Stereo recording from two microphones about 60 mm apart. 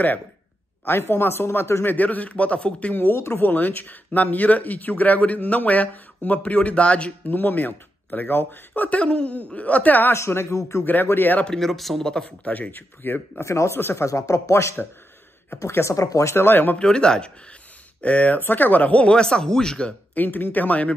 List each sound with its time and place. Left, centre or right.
0.8 s speech: left
1.9 s speech: left
10.1 s speech: left
11.1 s speech: left
11.4 s speech: centre
12.1 s speech: centre
12.4 s speech: left
13.4 s speech: left
13.7 s speech: left
14.0 s speech: left
16.3 s speech: left
16.7 s speech: centre
18.0 s speech: left
20.2 s speech: left